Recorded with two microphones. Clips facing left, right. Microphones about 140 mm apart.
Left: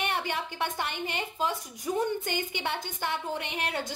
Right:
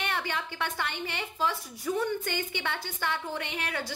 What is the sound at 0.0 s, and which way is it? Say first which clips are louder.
A woman's voice: left 2 dB; 15° left (ahead or behind).